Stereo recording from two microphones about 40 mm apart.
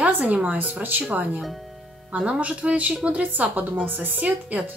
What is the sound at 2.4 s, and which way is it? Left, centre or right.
Speech, right.